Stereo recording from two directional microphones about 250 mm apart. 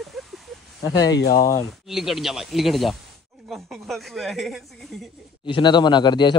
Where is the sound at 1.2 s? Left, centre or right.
Left.